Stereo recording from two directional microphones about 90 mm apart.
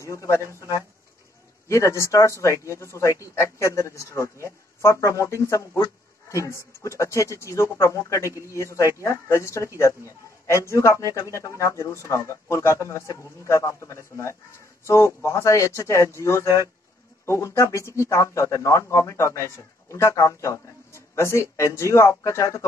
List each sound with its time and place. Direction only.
0.0 s a man's voice: 35° left (ahead or behind)
1.7 s a man's voice: 35° left (ahead or behind)